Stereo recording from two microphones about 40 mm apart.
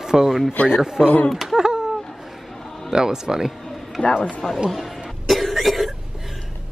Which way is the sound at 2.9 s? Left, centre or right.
Centre.